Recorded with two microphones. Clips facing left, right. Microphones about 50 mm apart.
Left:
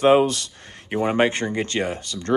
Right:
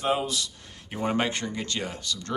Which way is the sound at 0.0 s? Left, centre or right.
Left.